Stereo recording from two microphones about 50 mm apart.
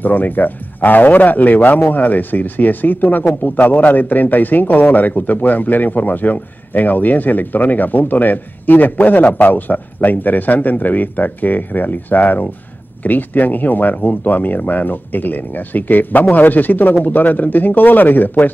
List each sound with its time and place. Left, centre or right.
0.0 s speech: left